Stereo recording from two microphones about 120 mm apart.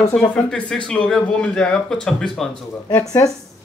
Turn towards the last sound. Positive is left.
turn(degrees=25)  # may be behind; listen again after turning